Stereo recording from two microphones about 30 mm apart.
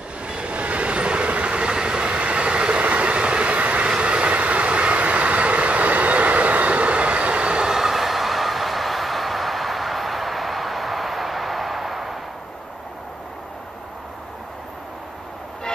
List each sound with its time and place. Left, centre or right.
0.3 s train: right
4.0 s vehicle: right
7.7 s train: centre